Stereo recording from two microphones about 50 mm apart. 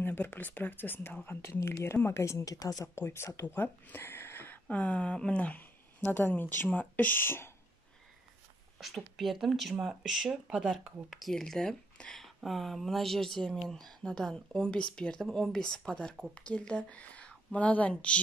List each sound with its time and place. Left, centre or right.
0.0 s speech: left
1.4 s speech: left
3.4 s speech: left
4.6 s a sound: left
5.9 s speech: left
8.7 s speech: centre
9.8 s speech: centre
11.3 s speech: centre
16.3 s speech: left